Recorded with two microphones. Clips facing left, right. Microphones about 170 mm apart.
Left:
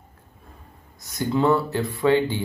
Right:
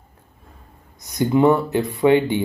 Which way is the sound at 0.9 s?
20° right (ahead or behind).